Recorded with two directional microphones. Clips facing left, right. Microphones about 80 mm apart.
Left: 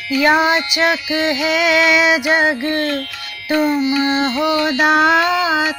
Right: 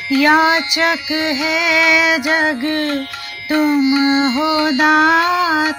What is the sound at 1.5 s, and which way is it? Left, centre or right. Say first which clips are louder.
Music: left 1 dB; left.